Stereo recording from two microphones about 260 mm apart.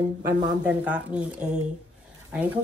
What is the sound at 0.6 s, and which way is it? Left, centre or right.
Speech, centre.